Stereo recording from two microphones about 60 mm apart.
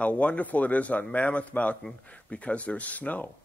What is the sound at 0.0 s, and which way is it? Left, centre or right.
Speech, left.